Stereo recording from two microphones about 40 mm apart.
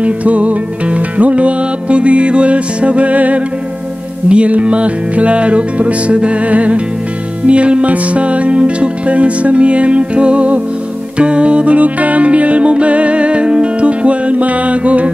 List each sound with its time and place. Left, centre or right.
0.0 s music: right